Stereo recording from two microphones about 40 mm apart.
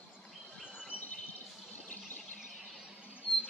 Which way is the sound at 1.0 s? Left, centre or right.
Left.